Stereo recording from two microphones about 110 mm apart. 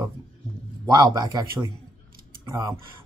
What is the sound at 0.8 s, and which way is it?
Speech, 40° right (ahead or behind).